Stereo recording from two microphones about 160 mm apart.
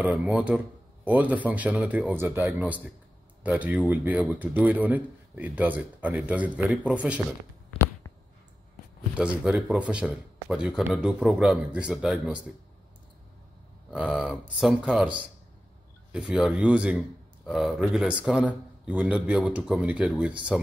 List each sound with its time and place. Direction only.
0.0 s speech: 10° right (ahead or behind)
9.1 s speech: 5° right (ahead or behind)
13.8 s speech: 5° right (ahead or behind)